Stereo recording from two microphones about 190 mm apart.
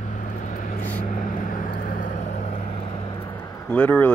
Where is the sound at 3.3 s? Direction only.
10° left (ahead or behind).